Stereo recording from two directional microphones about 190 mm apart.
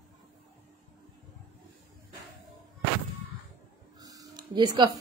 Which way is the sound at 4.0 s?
20° right (ahead or behind).